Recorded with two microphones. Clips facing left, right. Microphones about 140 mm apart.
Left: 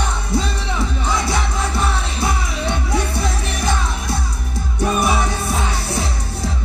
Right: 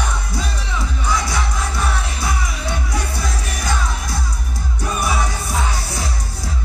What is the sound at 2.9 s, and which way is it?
Music, 25° left (ahead or behind).